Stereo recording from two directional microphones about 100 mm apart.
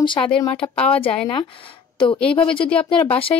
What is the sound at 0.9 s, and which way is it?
A woman's voice, 75° left (ahead or behind).